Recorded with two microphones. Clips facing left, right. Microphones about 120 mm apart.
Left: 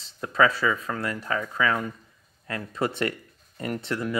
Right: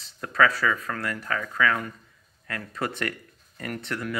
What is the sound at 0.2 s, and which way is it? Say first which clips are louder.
Speech: left 1 dB; 20° left (ahead or behind).